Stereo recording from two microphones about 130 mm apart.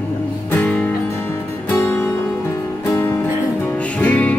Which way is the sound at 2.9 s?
20° left (ahead or behind).